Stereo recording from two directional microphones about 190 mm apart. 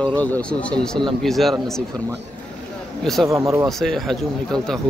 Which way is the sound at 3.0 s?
Centre (ahead or behind).